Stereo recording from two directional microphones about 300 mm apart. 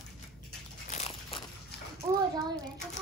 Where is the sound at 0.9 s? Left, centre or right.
Left.